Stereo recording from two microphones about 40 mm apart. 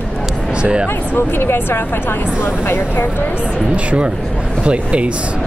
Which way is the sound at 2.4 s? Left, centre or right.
Left.